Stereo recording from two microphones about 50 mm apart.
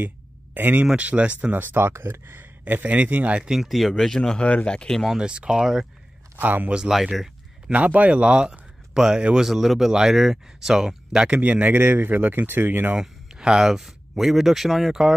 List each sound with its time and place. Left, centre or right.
0.6 s speech: right
0.9 s speech: right
1.5 s speech: right
2.6 s speech: right
3.4 s speech: centre
5.2 s speech: centre
6.4 s speech: right
6.9 s a sound: centre
7.7 s speech: right
11.4 s speech: right
13.0 s speech: centre
14.9 s speech: centre